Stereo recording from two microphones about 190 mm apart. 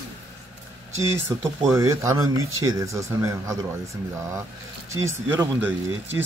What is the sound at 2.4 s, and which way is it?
Speech, 90° right.